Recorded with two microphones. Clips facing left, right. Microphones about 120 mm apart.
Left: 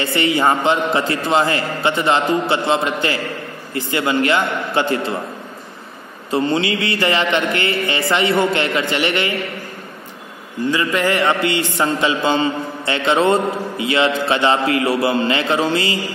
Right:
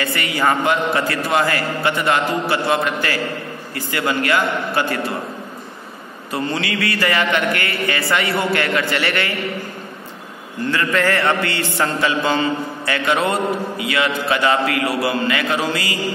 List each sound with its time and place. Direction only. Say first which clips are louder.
0.0 s a man's voice: left 3 dB; 25° left (ahead or behind)
6.3 s a man's voice: left 5 dB; 25° left (ahead or behind)
10.7 s a man's voice: even; 15° left (ahead or behind)